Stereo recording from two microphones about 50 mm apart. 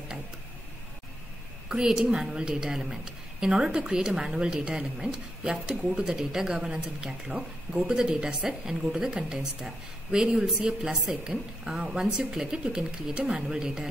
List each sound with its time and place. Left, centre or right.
1.7 s a woman's voice: centre